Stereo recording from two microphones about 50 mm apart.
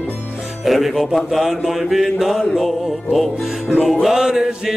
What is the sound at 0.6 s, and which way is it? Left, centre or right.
Mantra, centre.